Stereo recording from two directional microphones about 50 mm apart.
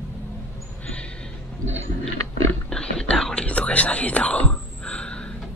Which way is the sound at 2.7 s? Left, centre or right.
Centre.